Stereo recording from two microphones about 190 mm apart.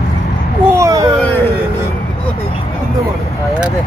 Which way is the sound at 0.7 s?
15° right (ahead or behind).